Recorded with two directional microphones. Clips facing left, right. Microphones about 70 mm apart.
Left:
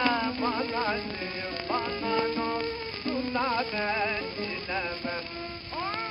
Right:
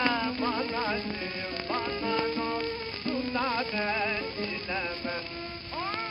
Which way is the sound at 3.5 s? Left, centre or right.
Centre.